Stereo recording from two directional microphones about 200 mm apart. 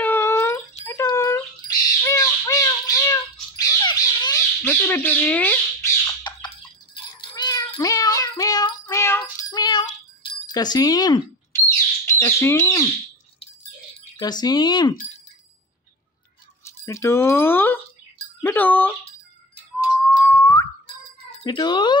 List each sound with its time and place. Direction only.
0.0 s wail: 10° left (ahead or behind)
0.8 s bird: 15° left (ahead or behind)
6.2 s cat: 25° left (ahead or behind)
10.2 s speech: 20° left (ahead or behind)
14.1 s speech: 20° left (ahead or behind)
16.6 s speech: 15° left (ahead or behind)
20.0 s music: 5° left (ahead or behind)
20.8 s cat: 30° left (ahead or behind)